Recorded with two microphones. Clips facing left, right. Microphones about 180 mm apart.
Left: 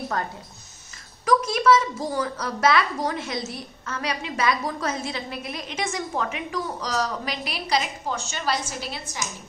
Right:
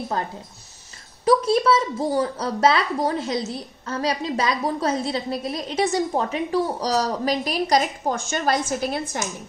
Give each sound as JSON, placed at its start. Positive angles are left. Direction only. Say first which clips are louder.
{"t": 1.2, "sound": "speech", "louder": "right 3 dB", "side_deg": -35}